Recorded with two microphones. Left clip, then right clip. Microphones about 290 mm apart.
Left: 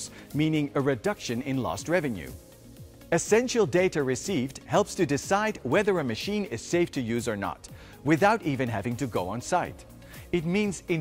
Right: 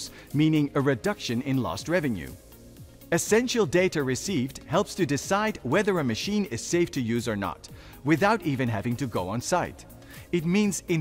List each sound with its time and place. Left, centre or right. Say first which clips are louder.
0.0 s speech: right 3 dB; right